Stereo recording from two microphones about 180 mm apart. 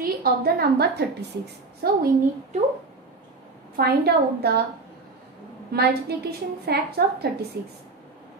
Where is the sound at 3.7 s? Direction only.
60° right (ahead or behind).